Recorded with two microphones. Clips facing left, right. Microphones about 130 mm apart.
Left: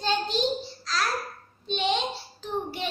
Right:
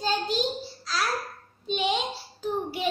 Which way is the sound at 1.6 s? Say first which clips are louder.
Even; 10° right (ahead or behind).